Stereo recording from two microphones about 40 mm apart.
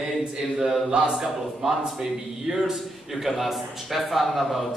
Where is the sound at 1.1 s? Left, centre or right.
Centre.